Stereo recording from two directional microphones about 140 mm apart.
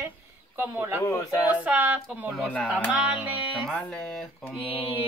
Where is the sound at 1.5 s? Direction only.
10° right (ahead or behind).